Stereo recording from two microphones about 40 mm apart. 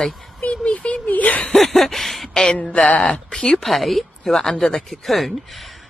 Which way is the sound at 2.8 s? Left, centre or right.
Left.